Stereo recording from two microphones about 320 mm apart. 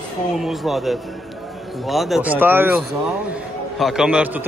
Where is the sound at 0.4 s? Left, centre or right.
Centre.